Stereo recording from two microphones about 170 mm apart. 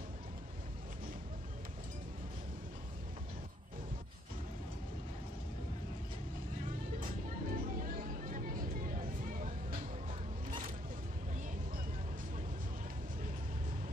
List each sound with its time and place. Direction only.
7.0 s music: 55° right (ahead or behind)